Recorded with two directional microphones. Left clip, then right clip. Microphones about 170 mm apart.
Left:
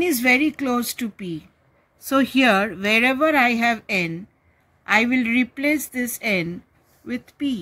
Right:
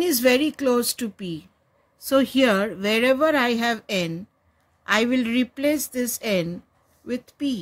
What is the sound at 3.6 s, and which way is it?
A woman's voice, 50° right (ahead or behind).